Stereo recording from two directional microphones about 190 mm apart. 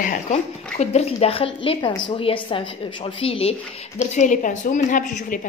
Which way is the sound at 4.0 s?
40° left (ahead or behind).